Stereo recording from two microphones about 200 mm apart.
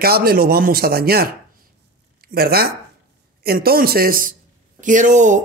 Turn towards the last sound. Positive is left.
turn(degrees=-40)  # may be behind; listen again after turning